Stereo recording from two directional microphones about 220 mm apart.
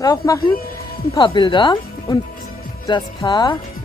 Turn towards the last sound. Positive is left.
turn(degrees=20)  # may be behind; listen again after turning